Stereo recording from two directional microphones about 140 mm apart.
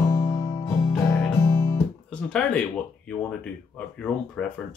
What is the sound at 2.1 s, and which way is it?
Speech, 5° left (ahead or behind).